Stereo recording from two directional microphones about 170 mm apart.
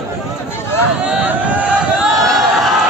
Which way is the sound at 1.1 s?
10° right (ahead or behind).